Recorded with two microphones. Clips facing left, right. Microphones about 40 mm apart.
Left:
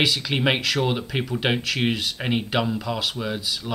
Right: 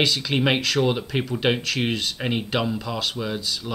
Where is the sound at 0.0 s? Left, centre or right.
Centre.